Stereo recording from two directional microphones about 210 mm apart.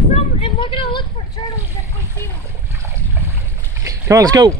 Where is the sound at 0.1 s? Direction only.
25° left (ahead or behind).